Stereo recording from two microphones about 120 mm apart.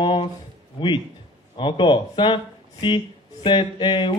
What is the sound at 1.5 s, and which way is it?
Speech, 45° left (ahead or behind).